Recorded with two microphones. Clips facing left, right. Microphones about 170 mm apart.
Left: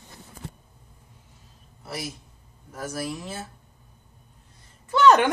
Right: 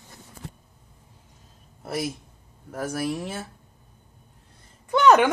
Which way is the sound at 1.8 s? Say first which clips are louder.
Right 6 dB; 50° right (ahead or behind).